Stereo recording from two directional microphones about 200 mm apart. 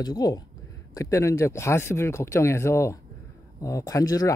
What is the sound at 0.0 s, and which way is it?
Speech, 20° left (ahead or behind).